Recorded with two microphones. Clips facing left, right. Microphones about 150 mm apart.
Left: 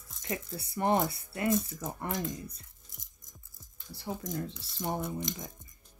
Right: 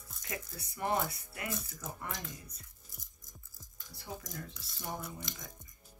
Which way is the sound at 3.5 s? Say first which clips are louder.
Left 8 dB; 25° left (ahead or behind).